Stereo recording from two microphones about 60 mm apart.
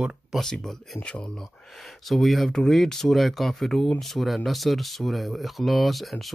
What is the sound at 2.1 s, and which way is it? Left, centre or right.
Speech, centre.